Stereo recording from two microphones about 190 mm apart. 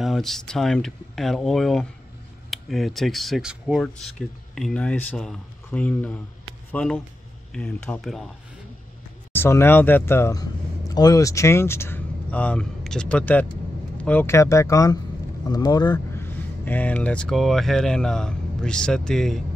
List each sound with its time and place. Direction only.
0.0 s speech: centre (ahead or behind)
9.3 s a man's voice: 10° left (ahead or behind)
16.6 s speech: 10° left (ahead or behind)